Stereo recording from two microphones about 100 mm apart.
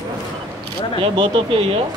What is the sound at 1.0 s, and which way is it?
Speech, 70° right (ahead or behind).